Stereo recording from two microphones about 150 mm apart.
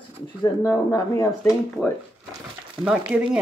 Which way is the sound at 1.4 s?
10° left (ahead or behind).